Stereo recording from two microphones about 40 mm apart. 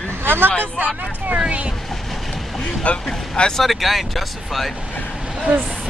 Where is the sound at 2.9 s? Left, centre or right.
Left.